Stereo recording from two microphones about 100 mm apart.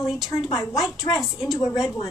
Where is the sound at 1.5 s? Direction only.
30° left (ahead or behind).